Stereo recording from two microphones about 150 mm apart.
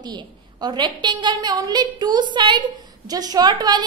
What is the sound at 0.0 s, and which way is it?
A woman's voice, 30° right (ahead or behind).